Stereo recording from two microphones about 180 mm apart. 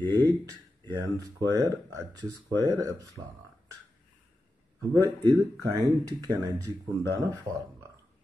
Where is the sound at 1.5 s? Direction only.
20° right (ahead or behind).